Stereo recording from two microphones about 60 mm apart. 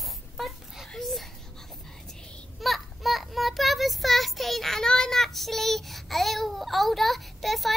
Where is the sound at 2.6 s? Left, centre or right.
Centre.